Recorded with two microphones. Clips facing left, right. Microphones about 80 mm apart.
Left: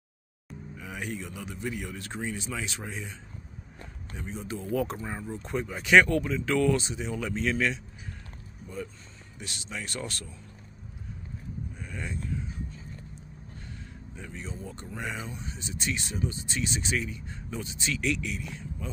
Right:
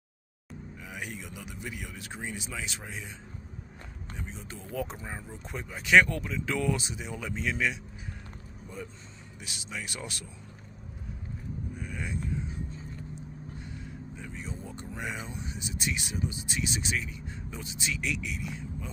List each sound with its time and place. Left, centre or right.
0.5 s speech: centre
4.2 s speech: centre
11.7 s vehicle: centre
15.2 s speech: centre